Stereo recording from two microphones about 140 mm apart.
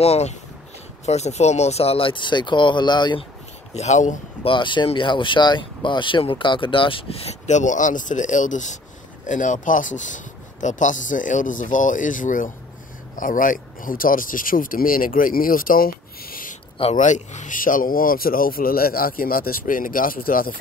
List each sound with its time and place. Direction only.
0.0 s speech: 50° left (ahead or behind); by 3.3 s 30° left (ahead or behind)
3.7 s speech: 55° left (ahead or behind)
4.4 s speech: 35° left (ahead or behind); by 16.5 s 90° left
16.9 s speech: 60° left (ahead or behind); by 20.5 s 90° left